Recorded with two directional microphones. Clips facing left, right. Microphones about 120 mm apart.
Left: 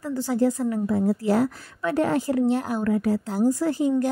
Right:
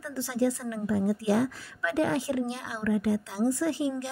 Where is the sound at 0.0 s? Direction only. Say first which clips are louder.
Left 5 dB; 45° left (ahead or behind).